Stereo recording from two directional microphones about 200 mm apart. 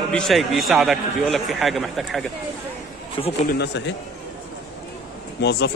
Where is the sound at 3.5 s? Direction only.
55° left (ahead or behind).